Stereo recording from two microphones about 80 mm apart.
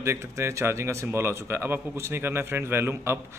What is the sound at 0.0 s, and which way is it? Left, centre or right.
Speech, right.